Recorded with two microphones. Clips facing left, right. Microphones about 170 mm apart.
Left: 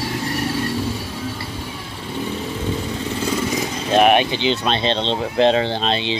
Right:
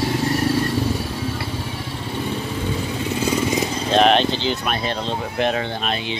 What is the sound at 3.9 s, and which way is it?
Speech, 10° left (ahead or behind).